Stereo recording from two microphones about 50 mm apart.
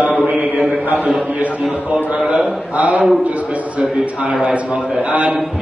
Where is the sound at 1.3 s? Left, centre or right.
Right.